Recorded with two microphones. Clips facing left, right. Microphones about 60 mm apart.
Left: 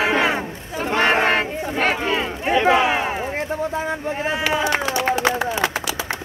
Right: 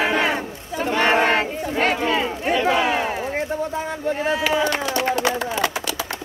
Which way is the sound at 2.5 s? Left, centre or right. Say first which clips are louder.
Left 3 dB; left.